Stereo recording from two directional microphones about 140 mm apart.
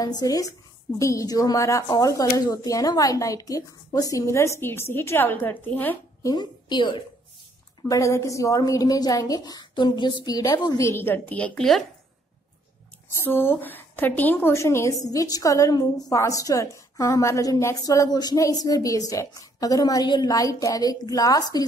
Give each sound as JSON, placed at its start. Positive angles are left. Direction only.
{"t": 0.0, "sound": "a woman's voice", "side_deg": 25}
{"t": 6.2, "sound": "a woman's voice", "side_deg": 30}
{"t": 7.9, "sound": "a woman's voice", "side_deg": 20}
{"t": 13.1, "sound": "a woman's voice", "side_deg": 15}